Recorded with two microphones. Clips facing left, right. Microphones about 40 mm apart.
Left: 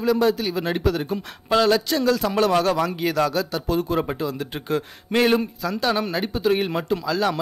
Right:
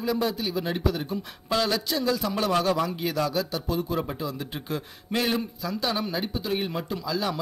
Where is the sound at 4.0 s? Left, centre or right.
Left.